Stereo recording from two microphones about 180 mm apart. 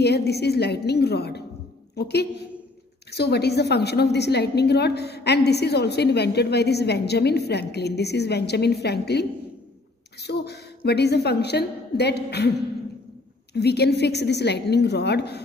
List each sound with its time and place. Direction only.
0.0 s a woman's voice: 65° left (ahead or behind)